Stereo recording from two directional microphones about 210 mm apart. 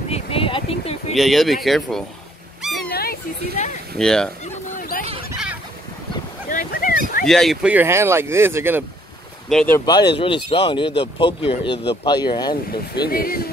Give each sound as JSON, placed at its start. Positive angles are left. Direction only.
{"t": 0.1, "sound": "a sound", "side_deg": 25}
{"t": 1.1, "sound": "speech", "side_deg": 0}
{"t": 2.9, "sound": "a sound", "side_deg": 45}
{"t": 4.0, "sound": "speech", "side_deg": 5}
{"t": 4.7, "sound": "fowl", "side_deg": 40}
{"t": 6.5, "sound": "a sound", "side_deg": 40}
{"t": 7.2, "sound": "speech", "side_deg": 0}
{"t": 9.5, "sound": "speech", "side_deg": 5}
{"t": 9.8, "sound": "speech", "side_deg": 20}
{"t": 12.9, "sound": "speech", "side_deg": 45}